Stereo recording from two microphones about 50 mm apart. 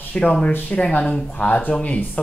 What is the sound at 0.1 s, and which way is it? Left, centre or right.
Speech, centre.